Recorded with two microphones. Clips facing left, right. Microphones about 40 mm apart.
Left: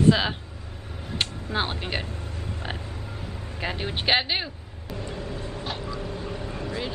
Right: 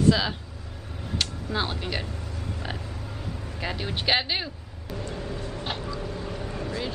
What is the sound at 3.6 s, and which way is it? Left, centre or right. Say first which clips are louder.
Speech: left 2 dB; centre.